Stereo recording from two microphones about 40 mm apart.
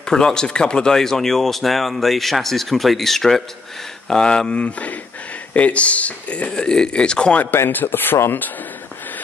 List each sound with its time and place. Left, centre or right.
0.0 s speech: centre; by 6.5 s left
6.5 s speech: centre
7.5 s speech: left